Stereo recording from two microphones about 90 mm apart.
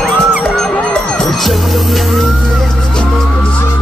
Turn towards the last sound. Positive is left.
turn(degrees=10)  # may be behind; listen again after turning